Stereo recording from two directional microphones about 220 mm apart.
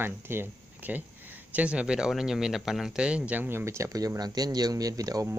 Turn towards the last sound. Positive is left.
turn(degrees=-15)  # may be behind; listen again after turning